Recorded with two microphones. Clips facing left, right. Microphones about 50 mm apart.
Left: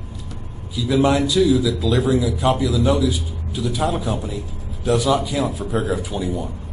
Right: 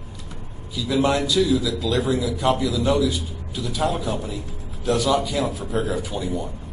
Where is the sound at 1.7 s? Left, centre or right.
Centre.